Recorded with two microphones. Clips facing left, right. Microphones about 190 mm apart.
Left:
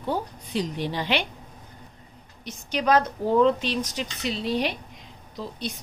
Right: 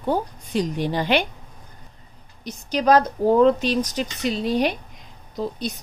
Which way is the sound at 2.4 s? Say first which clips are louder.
Right 5 dB; 40° right (ahead or behind).